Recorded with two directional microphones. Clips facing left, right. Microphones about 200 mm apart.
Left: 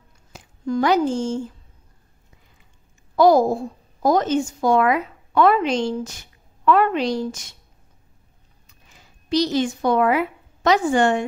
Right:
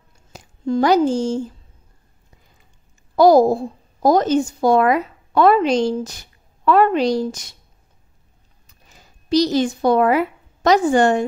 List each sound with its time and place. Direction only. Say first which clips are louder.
0.3 s speech: right 3 dB; 35° right (ahead or behind)
3.2 s a woman's voice: right 3 dB; 35° right (ahead or behind)
8.6 s speech: right 2 dB; 40° right (ahead or behind)